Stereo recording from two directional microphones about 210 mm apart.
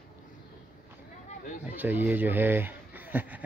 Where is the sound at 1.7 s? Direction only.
10° right (ahead or behind).